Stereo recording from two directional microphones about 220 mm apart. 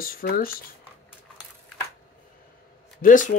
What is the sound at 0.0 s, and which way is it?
Speech, 40° left (ahead or behind).